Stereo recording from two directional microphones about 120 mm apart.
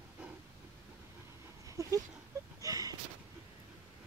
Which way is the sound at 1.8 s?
25° right (ahead or behind).